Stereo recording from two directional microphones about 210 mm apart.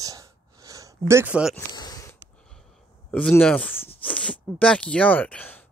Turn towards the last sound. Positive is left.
turn(degrees=5)  # may be behind; listen again after turning